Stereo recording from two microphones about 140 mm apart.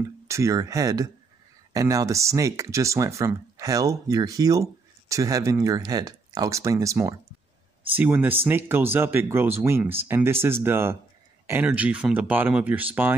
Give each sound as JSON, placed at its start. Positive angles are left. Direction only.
{"t": 0.3, "sound": "speech", "side_deg": -20}